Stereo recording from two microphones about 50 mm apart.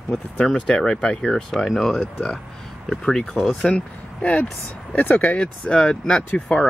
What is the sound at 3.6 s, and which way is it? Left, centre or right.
Speech, left.